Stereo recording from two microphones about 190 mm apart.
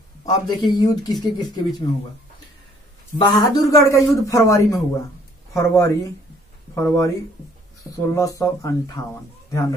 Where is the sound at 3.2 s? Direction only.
20° left (ahead or behind).